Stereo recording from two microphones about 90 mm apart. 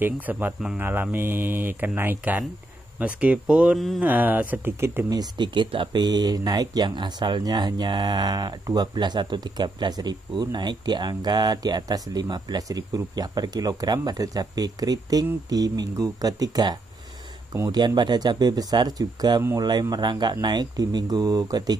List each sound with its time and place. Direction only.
0.0 s speech: 20° right (ahead or behind)
3.7 s a sound: centre (ahead or behind)
4.0 s speech: 20° right (ahead or behind)
4.7 s speech: 30° right (ahead or behind)
5.1 s speech: 55° right (ahead or behind)
6.0 s speech: 50° right (ahead or behind)